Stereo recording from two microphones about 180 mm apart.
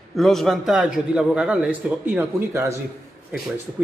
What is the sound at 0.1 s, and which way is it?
A man's voice, centre (ahead or behind).